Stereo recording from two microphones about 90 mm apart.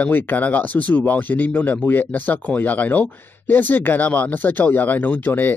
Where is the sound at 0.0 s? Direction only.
20° left (ahead or behind).